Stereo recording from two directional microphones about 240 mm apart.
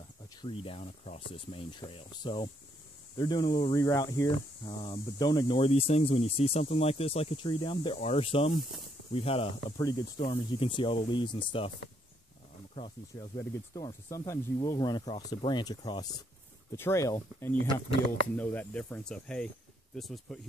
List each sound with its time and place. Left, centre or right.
0.4 s speech: left
12.7 s speech: left; by 20.3 s centre